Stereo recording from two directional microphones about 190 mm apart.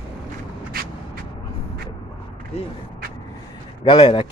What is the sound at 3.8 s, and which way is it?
Speech, 25° left (ahead or behind).